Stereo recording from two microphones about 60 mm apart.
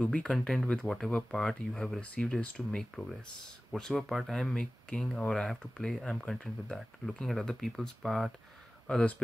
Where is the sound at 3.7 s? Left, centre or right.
Centre.